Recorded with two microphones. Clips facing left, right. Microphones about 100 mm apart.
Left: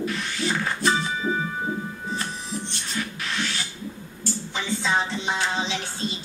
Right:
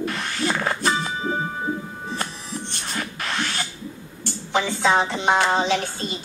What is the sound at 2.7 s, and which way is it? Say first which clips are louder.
Music: right 1 dB; 50° right (ahead or behind).